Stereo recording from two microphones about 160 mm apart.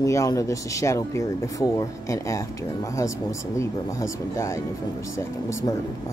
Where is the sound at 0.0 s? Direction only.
20° left (ahead or behind).